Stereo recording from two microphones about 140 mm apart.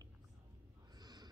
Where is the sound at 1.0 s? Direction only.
30° right (ahead or behind).